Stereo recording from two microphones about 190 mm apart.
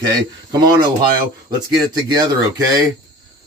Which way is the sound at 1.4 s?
20° right (ahead or behind).